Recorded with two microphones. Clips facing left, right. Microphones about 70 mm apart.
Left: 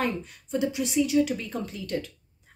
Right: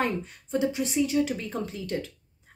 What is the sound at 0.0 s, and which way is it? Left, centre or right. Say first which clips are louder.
A woman's voice: right 1 dB; right.